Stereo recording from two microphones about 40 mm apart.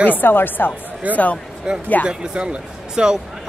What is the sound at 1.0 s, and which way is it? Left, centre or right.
Speech, right.